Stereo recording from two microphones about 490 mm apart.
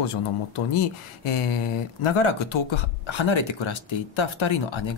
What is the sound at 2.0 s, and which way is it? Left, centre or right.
Speech, left.